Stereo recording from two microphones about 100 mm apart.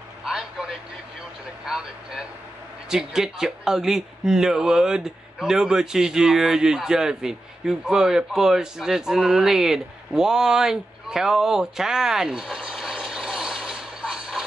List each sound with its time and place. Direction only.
0.2 s vehicle: 5° right (ahead or behind)
1.7 s speech: 5° right (ahead or behind)